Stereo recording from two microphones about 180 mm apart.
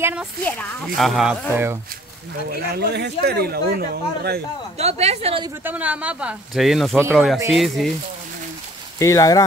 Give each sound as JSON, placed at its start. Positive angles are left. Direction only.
{"t": 0.0, "sound": "speech", "side_deg": -5}
{"t": 0.4, "sound": "speech", "side_deg": 5}
{"t": 2.6, "sound": "speech", "side_deg": -60}
{"t": 4.7, "sound": "a woman's voice", "side_deg": -35}
{"t": 5.6, "sound": "speech", "side_deg": -10}
{"t": 9.0, "sound": "speech", "side_deg": 20}